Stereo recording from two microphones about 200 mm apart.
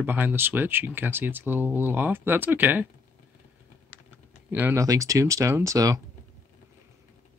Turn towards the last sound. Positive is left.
turn(degrees=-15)  # may be behind; listen again after turning